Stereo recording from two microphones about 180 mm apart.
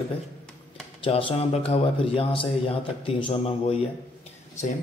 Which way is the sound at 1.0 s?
30° left (ahead or behind).